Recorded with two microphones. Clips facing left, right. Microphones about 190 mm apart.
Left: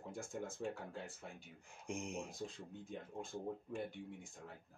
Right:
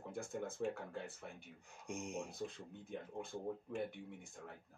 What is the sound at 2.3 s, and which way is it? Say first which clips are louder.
Speech: right 2 dB; 60° right (ahead or behind).